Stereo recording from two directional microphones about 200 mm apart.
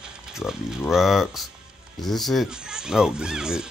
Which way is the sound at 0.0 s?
5° right (ahead or behind).